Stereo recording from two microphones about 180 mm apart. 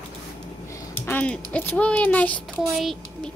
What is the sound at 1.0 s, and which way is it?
Speech, 10° left (ahead or behind).